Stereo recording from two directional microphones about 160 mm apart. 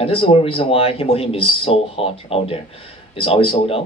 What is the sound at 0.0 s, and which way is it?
Speech, 35° left (ahead or behind).